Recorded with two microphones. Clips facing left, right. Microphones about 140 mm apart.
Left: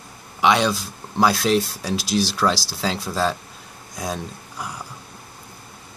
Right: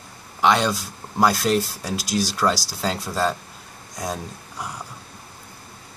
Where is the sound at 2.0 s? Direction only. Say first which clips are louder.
Left 2 dB; 70° left (ahead or behind).